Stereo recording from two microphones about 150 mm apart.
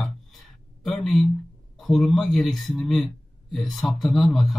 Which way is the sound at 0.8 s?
Centre (ahead or behind).